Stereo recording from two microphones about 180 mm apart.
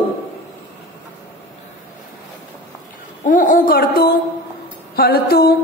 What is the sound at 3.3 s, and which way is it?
A woman's voice, 50° left (ahead or behind).